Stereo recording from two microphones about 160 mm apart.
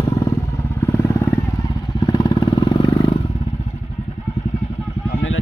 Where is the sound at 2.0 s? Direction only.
25° left (ahead or behind).